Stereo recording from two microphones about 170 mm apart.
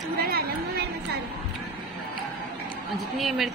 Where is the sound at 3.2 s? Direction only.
Centre (ahead or behind).